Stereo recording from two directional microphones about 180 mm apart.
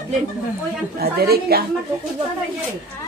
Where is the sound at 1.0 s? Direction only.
60° right (ahead or behind).